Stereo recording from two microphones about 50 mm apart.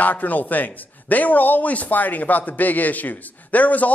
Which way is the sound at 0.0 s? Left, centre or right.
Left.